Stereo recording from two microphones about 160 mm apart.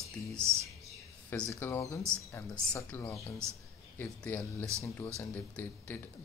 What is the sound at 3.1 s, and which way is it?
Speech, 20° left (ahead or behind).